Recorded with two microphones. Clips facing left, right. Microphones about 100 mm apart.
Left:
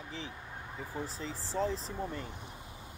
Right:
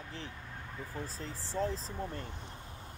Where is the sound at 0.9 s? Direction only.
15° left (ahead or behind).